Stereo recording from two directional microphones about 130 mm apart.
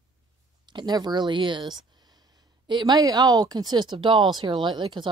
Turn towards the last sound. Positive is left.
turn(degrees=-35)  # may be behind; listen again after turning